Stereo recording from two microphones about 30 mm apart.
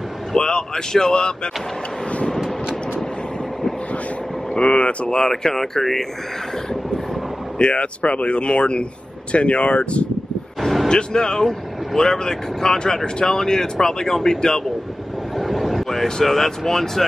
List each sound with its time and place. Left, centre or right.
0.4 s speech: left
4.6 s speech: left
5.3 s speech: centre
7.5 s speech: left
10.6 s vehicle: centre
10.9 s speech: left
15.3 s speech: centre